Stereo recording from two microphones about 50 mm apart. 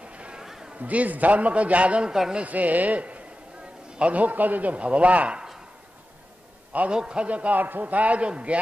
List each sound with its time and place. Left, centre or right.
0.1 s a sound: right
0.4 s a sound: centre
0.7 s a man's voice: right
2.0 s a man's voice: centre
2.4 s a man's voice: right
6.9 s a man's voice: centre